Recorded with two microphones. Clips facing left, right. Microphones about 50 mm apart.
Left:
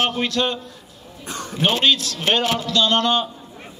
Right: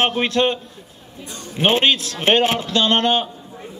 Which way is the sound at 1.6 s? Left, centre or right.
Right.